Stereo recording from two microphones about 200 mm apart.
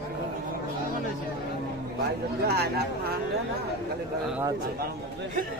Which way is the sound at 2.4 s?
50° right (ahead or behind).